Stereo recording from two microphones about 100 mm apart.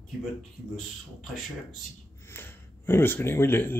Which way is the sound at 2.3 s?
25° left (ahead or behind).